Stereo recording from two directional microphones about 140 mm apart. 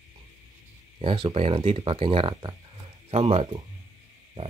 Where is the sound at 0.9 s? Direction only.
35° right (ahead or behind).